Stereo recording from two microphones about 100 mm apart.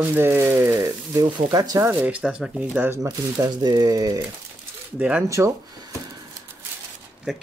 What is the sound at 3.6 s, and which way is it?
Speech, 45° right (ahead or behind).